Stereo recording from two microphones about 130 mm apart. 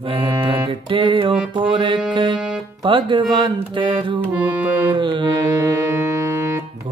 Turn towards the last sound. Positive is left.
turn(degrees=-35)  # may be behind; listen again after turning